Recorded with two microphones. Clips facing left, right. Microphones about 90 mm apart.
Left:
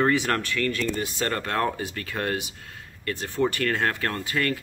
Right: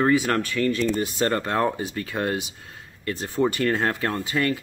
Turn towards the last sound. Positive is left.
turn(degrees=-15)  # may be behind; listen again after turning